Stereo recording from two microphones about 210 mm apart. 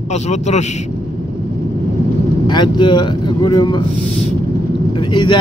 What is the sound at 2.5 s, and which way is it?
Speech, 20° left (ahead or behind).